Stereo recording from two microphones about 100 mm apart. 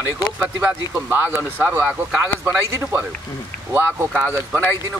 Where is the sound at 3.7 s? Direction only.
20° right (ahead or behind).